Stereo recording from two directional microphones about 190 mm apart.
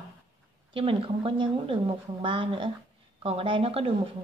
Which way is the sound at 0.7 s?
30° right (ahead or behind).